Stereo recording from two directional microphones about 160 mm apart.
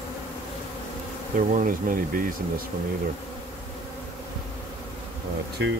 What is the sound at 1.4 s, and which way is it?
Speech, 55° right (ahead or behind).